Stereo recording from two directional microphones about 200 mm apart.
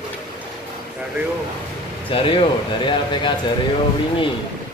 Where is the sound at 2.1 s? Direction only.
25° left (ahead or behind).